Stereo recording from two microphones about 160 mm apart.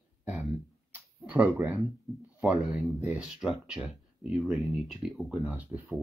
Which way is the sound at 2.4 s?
5° right (ahead or behind).